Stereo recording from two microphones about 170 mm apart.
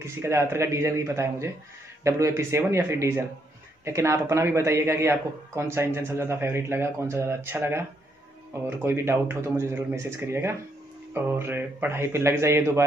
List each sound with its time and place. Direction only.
0.0 s a man's voice: 15° right (ahead or behind)